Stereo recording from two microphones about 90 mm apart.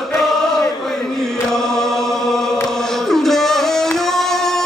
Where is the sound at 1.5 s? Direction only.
5° left (ahead or behind).